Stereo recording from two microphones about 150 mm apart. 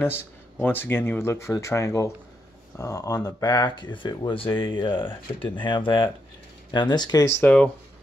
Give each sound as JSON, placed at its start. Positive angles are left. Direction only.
{"t": 0.0, "sound": "speech", "side_deg": 15}
{"t": 7.4, "sound": "speech", "side_deg": 5}